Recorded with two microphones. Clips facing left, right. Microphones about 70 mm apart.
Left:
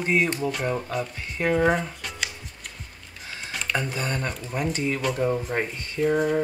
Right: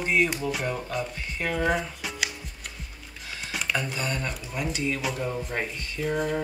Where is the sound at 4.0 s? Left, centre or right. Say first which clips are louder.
Left 2 dB; left.